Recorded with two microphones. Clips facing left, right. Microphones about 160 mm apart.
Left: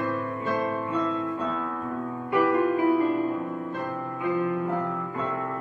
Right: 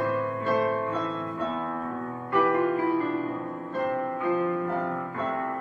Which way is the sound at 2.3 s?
15° left (ahead or behind).